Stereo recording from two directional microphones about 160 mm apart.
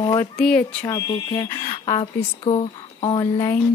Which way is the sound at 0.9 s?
25° left (ahead or behind).